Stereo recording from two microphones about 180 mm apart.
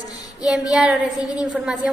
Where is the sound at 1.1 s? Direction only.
20° left (ahead or behind).